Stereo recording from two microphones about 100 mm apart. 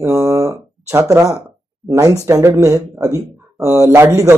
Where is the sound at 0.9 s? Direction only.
35° right (ahead or behind).